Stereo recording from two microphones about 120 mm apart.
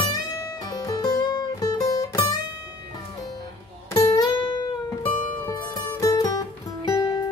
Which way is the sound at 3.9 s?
25° left (ahead or behind).